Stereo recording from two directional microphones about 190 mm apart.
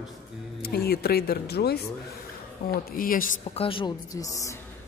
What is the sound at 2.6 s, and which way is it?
Speech, 45° left (ahead or behind).